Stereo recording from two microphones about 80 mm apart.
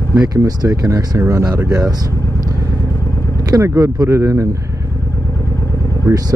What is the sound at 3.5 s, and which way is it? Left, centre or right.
Speech, right.